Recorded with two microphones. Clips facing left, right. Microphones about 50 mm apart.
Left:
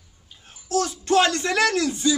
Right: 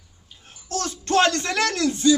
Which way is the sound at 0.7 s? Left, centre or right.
Centre.